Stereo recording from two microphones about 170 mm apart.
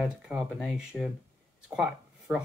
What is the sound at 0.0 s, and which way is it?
Speech, 5° right (ahead or behind).